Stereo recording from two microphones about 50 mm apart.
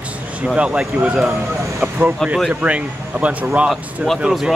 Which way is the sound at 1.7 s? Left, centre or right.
Right.